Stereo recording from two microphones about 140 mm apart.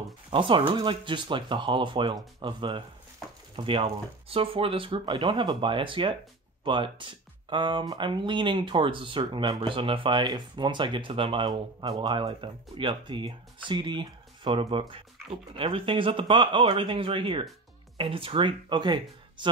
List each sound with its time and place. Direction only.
0.3 s speech: 40° right (ahead or behind)